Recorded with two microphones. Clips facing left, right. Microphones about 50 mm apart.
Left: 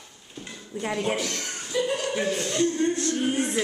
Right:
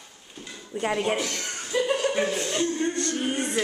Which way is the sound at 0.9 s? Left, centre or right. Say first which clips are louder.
Right 1 dB; centre.